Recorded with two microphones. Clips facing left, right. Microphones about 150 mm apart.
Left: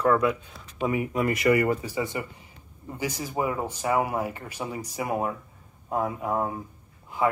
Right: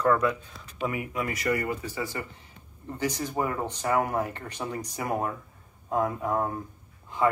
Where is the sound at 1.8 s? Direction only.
15° left (ahead or behind).